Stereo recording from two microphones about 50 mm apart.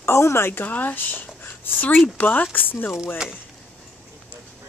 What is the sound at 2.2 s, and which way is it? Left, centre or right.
Speech, left.